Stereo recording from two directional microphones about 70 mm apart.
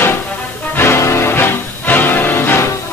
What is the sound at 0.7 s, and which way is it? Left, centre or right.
Music, left.